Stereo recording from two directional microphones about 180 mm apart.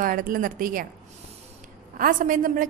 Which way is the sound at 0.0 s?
50° right (ahead or behind).